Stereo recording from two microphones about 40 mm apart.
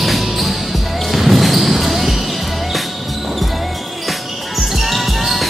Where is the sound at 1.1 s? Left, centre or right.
Centre.